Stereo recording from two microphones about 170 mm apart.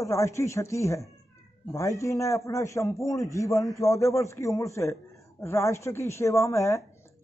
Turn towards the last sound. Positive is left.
turn(degrees=15)  # may be behind; listen again after turning